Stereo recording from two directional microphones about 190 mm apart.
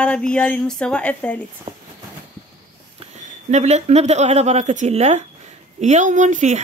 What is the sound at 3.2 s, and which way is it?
Speech, 35° right (ahead or behind).